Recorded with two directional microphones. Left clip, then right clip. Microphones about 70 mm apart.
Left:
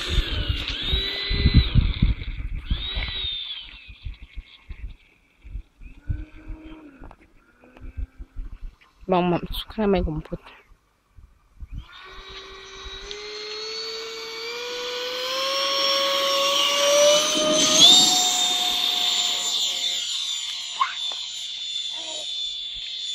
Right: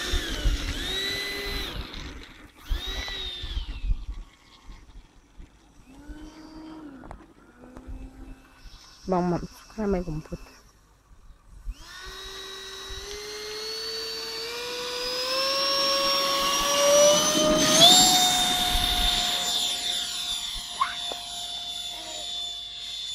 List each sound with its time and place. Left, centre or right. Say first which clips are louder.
0.0 s drill: left 2 dB; right
6.1 s vehicle: right 2 dB; right
9.0 s speech: left 5 dB; left
11.8 s dental drill: right 2 dB; right
17.5 s vehicle: left 3 dB; centre
21.0 s aircraft: left 4 dB; right